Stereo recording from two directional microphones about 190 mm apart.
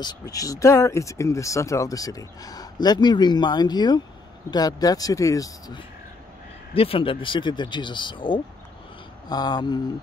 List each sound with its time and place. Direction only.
0.0 s speech: 20° left (ahead or behind)